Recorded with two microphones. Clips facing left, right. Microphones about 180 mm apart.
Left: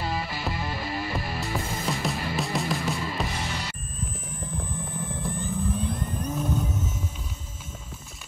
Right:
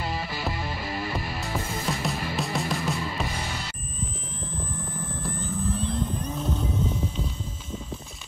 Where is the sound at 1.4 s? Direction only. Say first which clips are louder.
Even; centre (ahead or behind).